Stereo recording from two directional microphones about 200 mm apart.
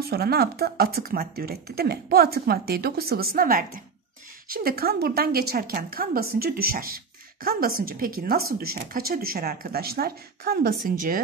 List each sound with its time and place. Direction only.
0.0 s speech: 50° right (ahead or behind)